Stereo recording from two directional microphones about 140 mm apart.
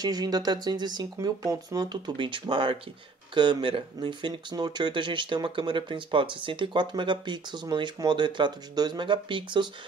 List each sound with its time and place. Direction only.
0.0 s speech: 30° right (ahead or behind)